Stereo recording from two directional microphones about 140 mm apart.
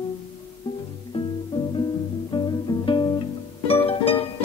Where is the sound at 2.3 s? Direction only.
30° left (ahead or behind).